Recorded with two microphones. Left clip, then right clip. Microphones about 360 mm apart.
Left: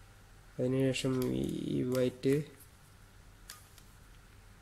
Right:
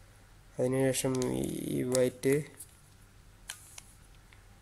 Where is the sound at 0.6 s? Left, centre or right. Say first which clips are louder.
Right 2 dB; centre.